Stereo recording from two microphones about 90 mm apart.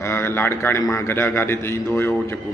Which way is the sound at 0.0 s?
25° left (ahead or behind).